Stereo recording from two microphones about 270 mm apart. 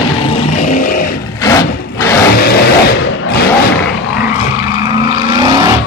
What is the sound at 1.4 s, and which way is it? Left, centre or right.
Vehicle, centre.